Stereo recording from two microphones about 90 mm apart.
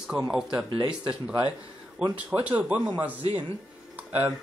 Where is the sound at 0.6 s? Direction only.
60° right (ahead or behind).